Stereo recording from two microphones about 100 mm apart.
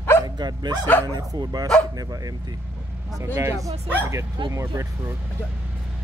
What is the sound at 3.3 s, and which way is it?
Speech, 35° right (ahead or behind).